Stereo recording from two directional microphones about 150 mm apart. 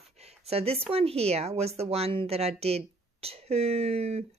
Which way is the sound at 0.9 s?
40° right (ahead or behind).